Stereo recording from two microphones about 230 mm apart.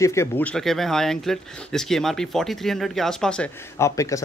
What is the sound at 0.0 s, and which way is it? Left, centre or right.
Speech, centre.